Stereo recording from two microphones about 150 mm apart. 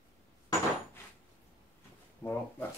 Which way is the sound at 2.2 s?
15° left (ahead or behind).